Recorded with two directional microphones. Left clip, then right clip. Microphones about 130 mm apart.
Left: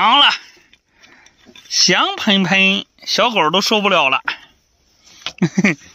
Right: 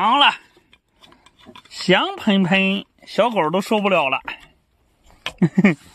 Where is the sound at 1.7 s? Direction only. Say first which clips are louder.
Left 4 dB; 15° right (ahead or behind).